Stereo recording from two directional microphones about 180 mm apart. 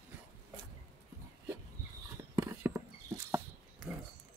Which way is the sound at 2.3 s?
15° right (ahead or behind).